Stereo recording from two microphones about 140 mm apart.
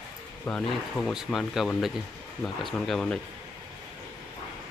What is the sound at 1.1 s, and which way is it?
Speech, centre (ahead or behind).